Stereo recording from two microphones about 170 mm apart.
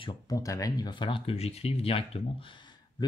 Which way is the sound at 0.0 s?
20° left (ahead or behind).